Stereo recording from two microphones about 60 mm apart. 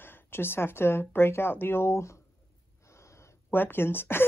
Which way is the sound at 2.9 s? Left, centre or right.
Left.